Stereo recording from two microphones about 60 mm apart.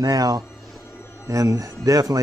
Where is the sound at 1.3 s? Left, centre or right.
Right.